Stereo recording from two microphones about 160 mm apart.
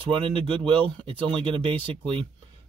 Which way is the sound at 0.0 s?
35° right (ahead or behind).